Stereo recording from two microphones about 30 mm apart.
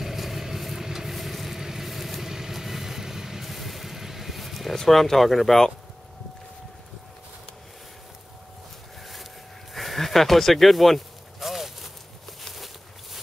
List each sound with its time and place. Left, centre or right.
0.0 s vehicle: centre
1.6 s vehicle: centre
1.9 s vehicle: centre
4.8 s speech: centre
9.0 s a sound: centre
9.8 s speech: centre
11.3 s a sound: centre